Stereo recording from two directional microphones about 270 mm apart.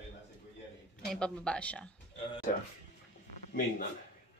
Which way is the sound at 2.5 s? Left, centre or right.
Left.